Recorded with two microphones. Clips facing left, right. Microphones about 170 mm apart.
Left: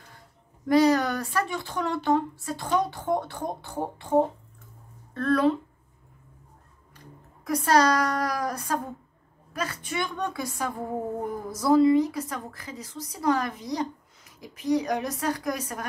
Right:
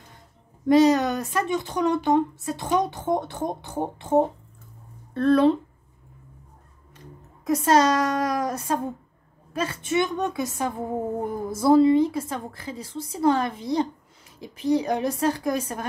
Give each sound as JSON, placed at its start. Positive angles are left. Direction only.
{"t": 0.7, "sound": "a woman's voice", "side_deg": -20}
{"t": 7.4, "sound": "a woman's voice", "side_deg": -25}